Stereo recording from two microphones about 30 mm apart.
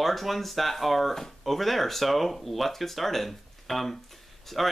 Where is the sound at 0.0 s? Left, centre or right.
Centre.